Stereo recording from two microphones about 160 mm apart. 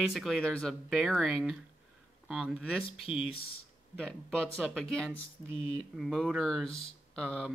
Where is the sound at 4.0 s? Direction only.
5° left (ahead or behind).